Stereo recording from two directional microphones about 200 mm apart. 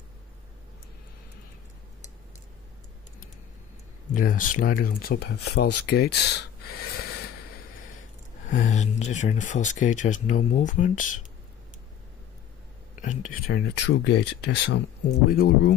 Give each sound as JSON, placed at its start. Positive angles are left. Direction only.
{"t": 4.1, "sound": "speech", "side_deg": 40}
{"t": 8.5, "sound": "speech", "side_deg": 40}
{"t": 13.0, "sound": "speech", "side_deg": 40}
{"t": 15.0, "sound": "speech", "side_deg": 45}